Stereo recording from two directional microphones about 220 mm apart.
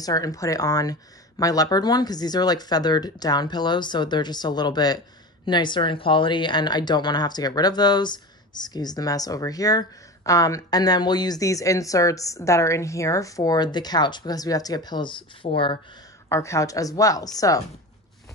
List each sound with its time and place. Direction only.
0.0 s speech: 15° left (ahead or behind)